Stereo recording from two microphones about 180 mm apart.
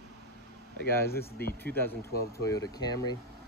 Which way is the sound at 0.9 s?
15° left (ahead or behind).